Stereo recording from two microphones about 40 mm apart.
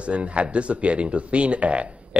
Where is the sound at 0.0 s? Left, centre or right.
Right.